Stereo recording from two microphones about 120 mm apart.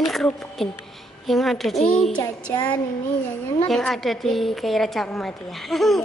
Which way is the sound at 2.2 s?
25° left (ahead or behind).